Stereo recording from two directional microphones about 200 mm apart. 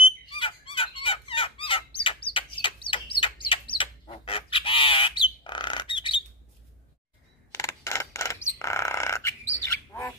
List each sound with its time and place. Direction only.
0.4 s fowl: 25° left (ahead or behind)
2.0 s bird: 25° left (ahead or behind)
7.5 s bird: 15° left (ahead or behind)